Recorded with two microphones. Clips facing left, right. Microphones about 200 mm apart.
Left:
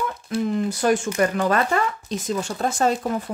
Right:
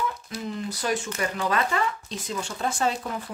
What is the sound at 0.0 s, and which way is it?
Speech, 50° left (ahead or behind).